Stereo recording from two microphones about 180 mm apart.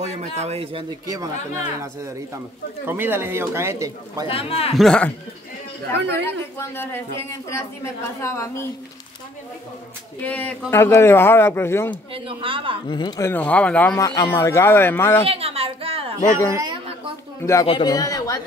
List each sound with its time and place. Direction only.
0.0 s a man's voice: 40° right (ahead or behind); by 4.3 s 15° right (ahead or behind)
4.3 s a man's voice: 30° left (ahead or behind)
4.7 s speech: 5° left (ahead or behind)
6.2 s a woman's voice: 10° left (ahead or behind)
10.2 s a woman's voice: 10° left (ahead or behind)
11.9 s speech: 30° right (ahead or behind)
12.8 s a man's voice: 25° left (ahead or behind)
13.3 s a woman's voice: 5° left (ahead or behind)
14.0 s a woman's voice: 20° left (ahead or behind)
15.2 s a sound: 35° right (ahead or behind)
17.4 s a man's voice: 15° left (ahead or behind)